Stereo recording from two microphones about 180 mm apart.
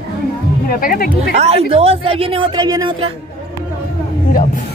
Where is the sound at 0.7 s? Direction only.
55° left (ahead or behind).